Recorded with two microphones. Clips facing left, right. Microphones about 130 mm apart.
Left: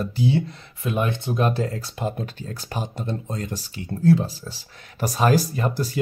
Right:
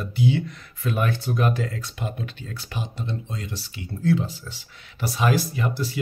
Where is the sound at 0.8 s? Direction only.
20° left (ahead or behind).